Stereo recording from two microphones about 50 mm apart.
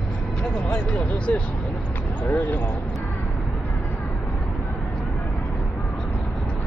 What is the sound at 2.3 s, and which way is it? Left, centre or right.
Speech, left.